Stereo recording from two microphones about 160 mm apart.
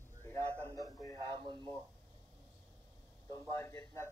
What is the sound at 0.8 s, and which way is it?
Speech, 20° left (ahead or behind).